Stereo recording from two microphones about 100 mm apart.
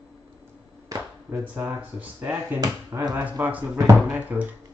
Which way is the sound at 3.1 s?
20° right (ahead or behind).